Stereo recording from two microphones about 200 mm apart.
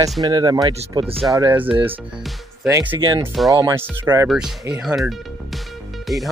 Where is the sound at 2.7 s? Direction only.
15° right (ahead or behind).